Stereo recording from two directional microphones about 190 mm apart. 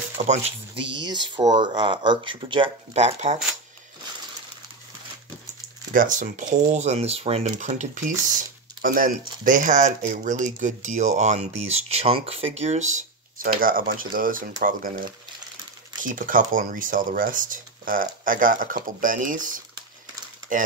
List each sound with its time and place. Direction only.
0.2 s speech: 35° right (ahead or behind)
5.9 s speech: 45° right (ahead or behind)